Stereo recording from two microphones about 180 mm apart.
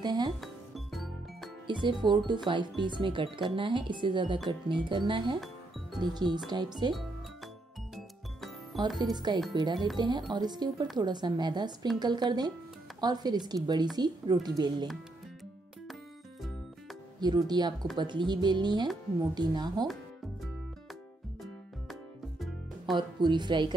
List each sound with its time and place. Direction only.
0.0 s speech: 25° right (ahead or behind)
0.4 s music: centre (ahead or behind)
1.7 s speech: 25° right (ahead or behind)
7.9 s music: centre (ahead or behind)
9.1 s speech: 25° right (ahead or behind)
17.2 s speech: 25° right (ahead or behind)
22.9 s speech: 25° right (ahead or behind)